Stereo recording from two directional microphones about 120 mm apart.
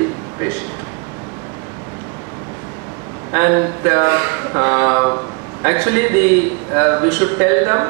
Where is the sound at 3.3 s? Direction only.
20° right (ahead or behind).